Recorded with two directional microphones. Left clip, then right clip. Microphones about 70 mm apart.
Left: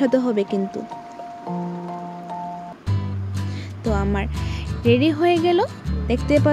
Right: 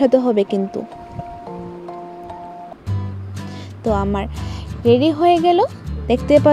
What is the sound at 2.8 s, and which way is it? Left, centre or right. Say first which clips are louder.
Music: left 1 dB; centre.